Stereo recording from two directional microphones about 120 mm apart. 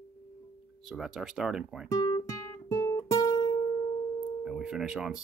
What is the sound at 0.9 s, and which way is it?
Speech, 5° right (ahead or behind).